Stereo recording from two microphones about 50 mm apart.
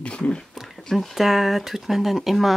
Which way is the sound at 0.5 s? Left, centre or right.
Centre.